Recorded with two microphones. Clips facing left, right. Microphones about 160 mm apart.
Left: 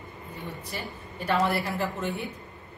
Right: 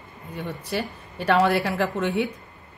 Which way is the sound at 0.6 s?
80° right.